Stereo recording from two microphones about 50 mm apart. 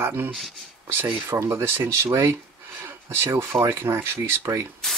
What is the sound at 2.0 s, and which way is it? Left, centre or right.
Speech, right.